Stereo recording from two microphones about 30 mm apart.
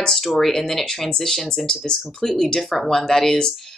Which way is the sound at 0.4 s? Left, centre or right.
Centre.